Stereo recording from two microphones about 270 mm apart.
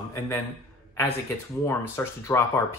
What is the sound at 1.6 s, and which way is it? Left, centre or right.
Speech, centre.